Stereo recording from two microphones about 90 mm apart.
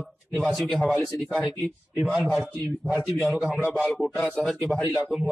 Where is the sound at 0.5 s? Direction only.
Centre (ahead or behind).